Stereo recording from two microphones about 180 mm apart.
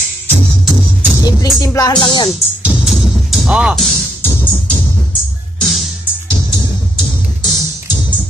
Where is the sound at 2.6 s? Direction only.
5° right (ahead or behind).